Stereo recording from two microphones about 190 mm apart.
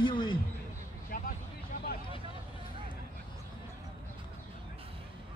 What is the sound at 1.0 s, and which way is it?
Vehicle, 50° left (ahead or behind).